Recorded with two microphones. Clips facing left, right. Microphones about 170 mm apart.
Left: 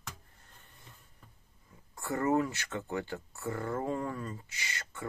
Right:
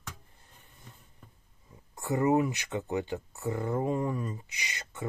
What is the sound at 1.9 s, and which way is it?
Speech, 20° right (ahead or behind).